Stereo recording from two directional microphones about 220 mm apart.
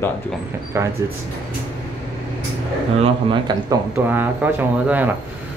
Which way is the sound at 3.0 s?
20° right (ahead or behind).